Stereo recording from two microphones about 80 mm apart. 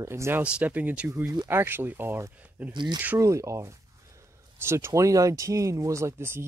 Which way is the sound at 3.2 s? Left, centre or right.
Right.